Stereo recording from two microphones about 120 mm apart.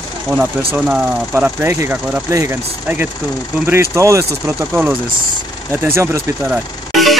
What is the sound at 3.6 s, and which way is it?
Speech, 20° right (ahead or behind).